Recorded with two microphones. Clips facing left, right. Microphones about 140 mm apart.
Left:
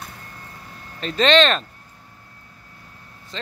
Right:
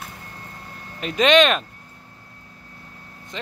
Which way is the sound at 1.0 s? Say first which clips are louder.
Right 1 dB; 10° right (ahead or behind).